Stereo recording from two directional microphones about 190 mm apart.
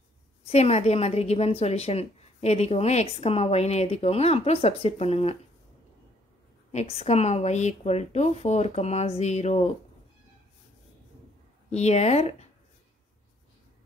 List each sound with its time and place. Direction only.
0.5 s a woman's voice: 35° left (ahead or behind)
6.7 s a woman's voice: 35° left (ahead or behind)
11.7 s a woman's voice: 35° left (ahead or behind)